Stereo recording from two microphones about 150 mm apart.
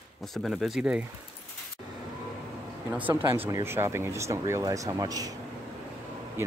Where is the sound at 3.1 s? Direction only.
15° right (ahead or behind).